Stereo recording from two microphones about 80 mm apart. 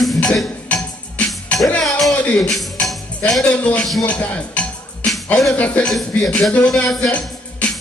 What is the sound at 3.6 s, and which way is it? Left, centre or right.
Speech, centre.